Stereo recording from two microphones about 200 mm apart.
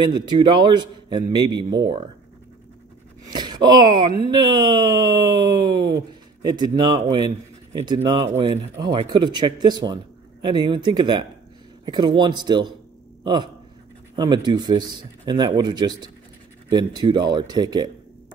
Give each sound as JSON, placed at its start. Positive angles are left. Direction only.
{"t": 0.0, "sound": "a man's voice", "side_deg": -20}
{"t": 3.3, "sound": "a man's voice", "side_deg": -20}